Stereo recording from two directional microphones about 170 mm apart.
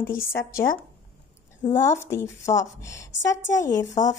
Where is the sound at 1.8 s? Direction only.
15° left (ahead or behind).